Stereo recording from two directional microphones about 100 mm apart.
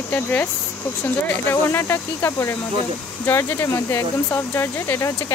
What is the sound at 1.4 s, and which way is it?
Speech, 25° left (ahead or behind).